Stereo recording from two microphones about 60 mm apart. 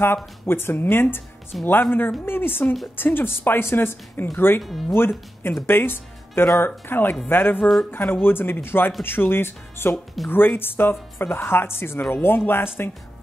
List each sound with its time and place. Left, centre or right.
0.0 s speech: left
4.6 s speech: centre
5.4 s speech: left